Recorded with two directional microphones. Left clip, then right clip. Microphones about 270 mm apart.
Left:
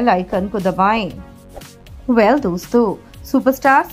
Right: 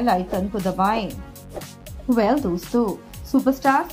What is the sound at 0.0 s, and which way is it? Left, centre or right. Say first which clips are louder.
A woman's voice: left 5 dB; centre.